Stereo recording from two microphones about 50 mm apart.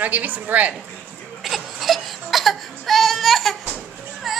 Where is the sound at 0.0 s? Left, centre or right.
Right.